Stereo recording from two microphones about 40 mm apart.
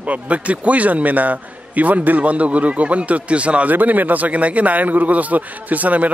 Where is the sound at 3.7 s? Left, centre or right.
Right.